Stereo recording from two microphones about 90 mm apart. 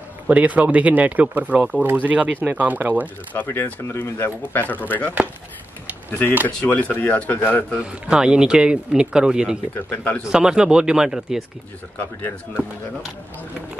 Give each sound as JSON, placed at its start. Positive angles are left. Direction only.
{"t": 0.3, "sound": "speech", "side_deg": -15}
{"t": 3.3, "sound": "speech", "side_deg": 25}
{"t": 6.4, "sound": "speech", "side_deg": 15}
{"t": 7.8, "sound": "speech", "side_deg": -10}
{"t": 9.8, "sound": "speech", "side_deg": 15}
{"t": 10.2, "sound": "speech", "side_deg": -10}
{"t": 12.2, "sound": "speech", "side_deg": 20}